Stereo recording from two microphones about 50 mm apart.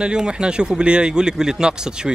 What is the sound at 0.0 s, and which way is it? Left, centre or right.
Speech, centre.